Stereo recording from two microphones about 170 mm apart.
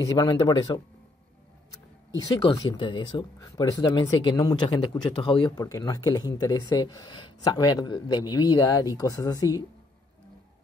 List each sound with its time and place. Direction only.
0.0 s speech: 20° left (ahead or behind)
2.1 s speech: 20° left (ahead or behind)